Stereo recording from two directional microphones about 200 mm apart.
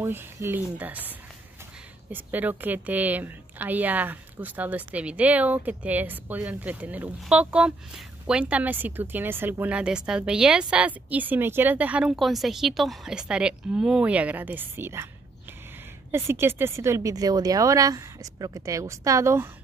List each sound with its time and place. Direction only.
0.0 s a woman's voice: 10° right (ahead or behind)
16.1 s a woman's voice: 10° right (ahead or behind)